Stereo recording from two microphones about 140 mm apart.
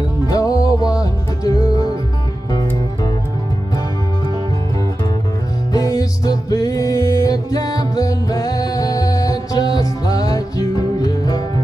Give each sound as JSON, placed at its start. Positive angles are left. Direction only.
{"t": 0.3, "sound": "music", "side_deg": 25}
{"t": 5.7, "sound": "music", "side_deg": 25}